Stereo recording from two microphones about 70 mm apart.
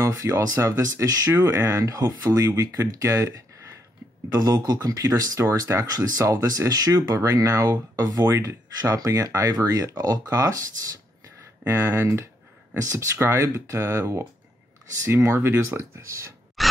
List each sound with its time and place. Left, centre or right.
0.0 s speech: right
1.3 s speech: right
4.3 s speech: right
5.4 s speech: right
11.6 s speech: right
12.7 s speech: right
16.6 s a sound: centre